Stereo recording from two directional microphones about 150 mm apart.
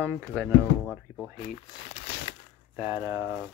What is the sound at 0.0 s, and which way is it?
Speech, 15° right (ahead or behind).